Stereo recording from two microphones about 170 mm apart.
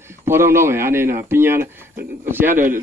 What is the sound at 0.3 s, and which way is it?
Speech, 15° right (ahead or behind).